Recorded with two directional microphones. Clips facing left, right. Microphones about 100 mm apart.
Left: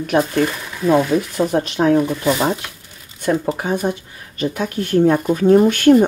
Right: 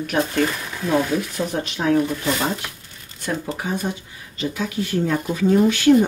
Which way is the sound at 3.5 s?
60° left (ahead or behind).